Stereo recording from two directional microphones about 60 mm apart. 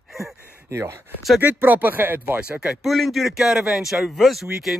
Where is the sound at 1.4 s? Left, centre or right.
Right.